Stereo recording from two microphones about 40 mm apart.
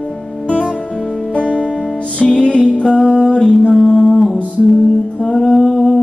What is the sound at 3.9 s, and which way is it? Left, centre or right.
Mantra, centre.